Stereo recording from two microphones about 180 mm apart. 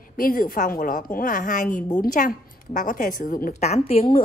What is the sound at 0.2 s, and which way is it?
A woman's voice, 50° left (ahead or behind).